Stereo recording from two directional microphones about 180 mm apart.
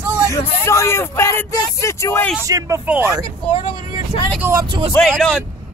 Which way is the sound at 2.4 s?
15° right (ahead or behind).